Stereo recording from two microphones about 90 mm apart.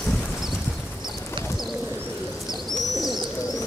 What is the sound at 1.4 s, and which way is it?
Bird, 65° right (ahead or behind).